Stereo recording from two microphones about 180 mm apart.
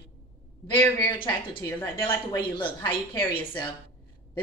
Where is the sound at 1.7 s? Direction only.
15° left (ahead or behind).